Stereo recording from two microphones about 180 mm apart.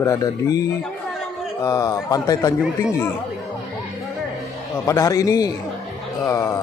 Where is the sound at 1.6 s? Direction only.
20° left (ahead or behind).